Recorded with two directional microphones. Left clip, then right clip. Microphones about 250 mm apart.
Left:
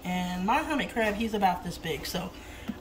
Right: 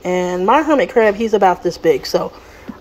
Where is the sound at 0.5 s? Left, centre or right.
Right.